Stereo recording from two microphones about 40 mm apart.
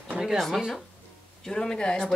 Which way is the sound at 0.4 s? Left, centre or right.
Centre.